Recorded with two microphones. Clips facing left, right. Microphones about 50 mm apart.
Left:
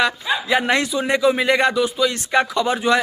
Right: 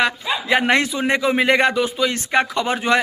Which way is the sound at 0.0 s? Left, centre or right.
Right.